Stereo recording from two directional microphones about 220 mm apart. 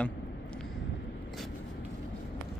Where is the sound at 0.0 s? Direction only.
5° left (ahead or behind).